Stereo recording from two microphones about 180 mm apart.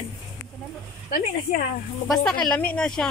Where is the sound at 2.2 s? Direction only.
5° left (ahead or behind).